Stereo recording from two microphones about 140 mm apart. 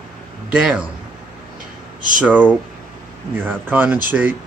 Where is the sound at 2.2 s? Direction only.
10° right (ahead or behind).